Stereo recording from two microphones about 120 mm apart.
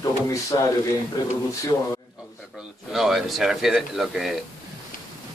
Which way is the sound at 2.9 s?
Centre (ahead or behind).